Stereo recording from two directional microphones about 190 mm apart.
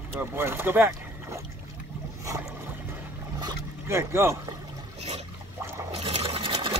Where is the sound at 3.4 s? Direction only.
15° right (ahead or behind).